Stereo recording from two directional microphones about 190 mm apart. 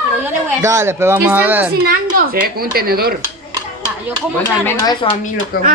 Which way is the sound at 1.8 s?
50° right (ahead or behind).